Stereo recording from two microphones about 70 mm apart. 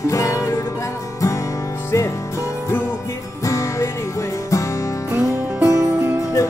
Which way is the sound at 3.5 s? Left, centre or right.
Left.